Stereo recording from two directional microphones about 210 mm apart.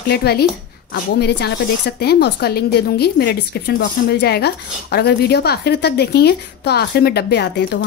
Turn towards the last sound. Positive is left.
turn(degrees=55)  # may be behind; listen again after turning